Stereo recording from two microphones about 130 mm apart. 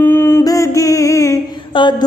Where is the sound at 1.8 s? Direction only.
35° left (ahead or behind).